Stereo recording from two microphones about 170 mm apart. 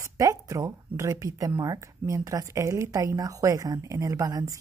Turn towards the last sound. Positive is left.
turn(degrees=-20)  # may be behind; listen again after turning